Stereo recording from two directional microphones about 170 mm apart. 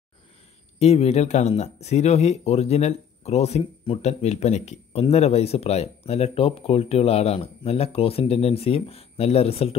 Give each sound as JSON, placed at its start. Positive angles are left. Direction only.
{"t": 0.7, "sound": "speech", "side_deg": 40}